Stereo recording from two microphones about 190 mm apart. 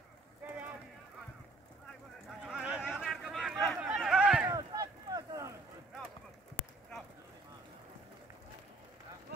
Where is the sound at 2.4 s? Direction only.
5° right (ahead or behind).